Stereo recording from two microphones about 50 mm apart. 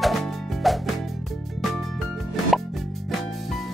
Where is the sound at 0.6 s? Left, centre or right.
Centre.